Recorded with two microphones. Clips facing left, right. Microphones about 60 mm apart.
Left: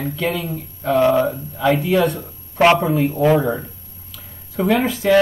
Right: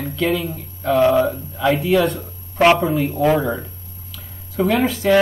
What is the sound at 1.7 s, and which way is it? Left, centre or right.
Speech, left.